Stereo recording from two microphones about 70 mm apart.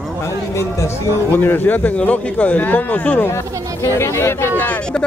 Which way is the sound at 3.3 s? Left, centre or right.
Left.